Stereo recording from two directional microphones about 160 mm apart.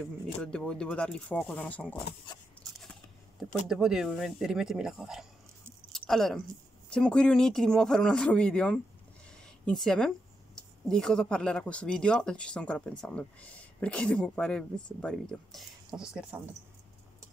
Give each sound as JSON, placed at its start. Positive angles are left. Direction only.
{"t": 0.4, "sound": "speech", "side_deg": 5}